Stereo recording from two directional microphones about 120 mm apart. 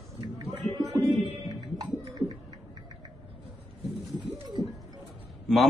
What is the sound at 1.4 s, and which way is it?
Music, 35° right (ahead or behind).